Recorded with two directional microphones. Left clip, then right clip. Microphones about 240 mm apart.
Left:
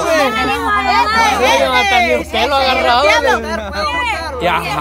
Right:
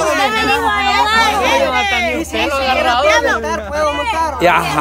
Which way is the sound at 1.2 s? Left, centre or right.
Left.